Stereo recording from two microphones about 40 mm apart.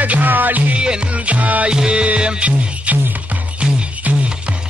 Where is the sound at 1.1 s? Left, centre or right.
Right.